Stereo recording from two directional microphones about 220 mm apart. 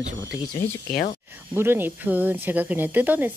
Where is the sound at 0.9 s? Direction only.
45° left (ahead or behind).